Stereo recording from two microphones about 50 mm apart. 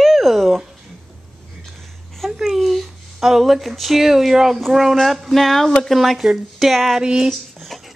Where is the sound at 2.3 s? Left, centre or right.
Centre.